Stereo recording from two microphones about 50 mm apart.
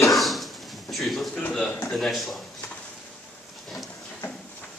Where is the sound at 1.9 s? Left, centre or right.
Centre.